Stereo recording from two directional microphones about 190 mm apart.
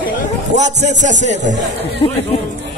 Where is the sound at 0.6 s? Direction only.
40° right (ahead or behind).